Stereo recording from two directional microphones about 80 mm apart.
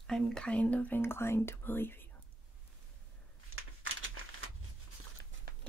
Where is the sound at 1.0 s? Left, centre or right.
Left.